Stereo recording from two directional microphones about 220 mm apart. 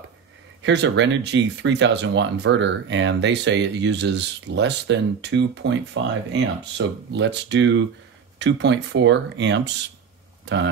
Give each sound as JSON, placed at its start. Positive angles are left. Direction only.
{"t": 0.6, "sound": "speech", "side_deg": -55}